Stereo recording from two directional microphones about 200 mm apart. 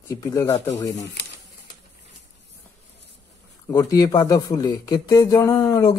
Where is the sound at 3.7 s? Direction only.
20° left (ahead or behind).